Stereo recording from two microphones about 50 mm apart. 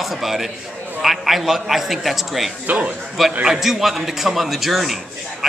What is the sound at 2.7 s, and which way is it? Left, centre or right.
Speech, right.